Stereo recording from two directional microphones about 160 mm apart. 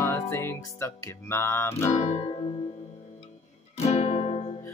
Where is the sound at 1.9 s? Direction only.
45° left (ahead or behind).